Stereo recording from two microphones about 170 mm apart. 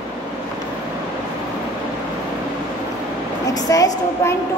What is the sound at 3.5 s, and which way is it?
Speech, 20° left (ahead or behind).